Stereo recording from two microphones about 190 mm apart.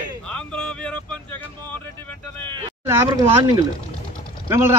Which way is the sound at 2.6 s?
20° right (ahead or behind).